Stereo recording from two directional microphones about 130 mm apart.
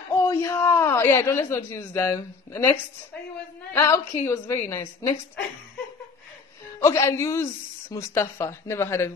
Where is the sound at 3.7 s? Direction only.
20° left (ahead or behind).